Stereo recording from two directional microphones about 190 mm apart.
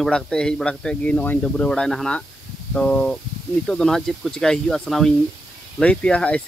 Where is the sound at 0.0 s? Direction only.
5° left (ahead or behind).